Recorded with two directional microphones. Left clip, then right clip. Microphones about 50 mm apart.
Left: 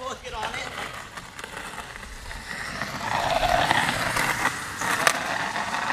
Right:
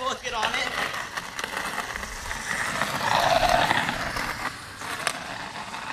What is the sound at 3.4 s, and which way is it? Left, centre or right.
Horse, centre.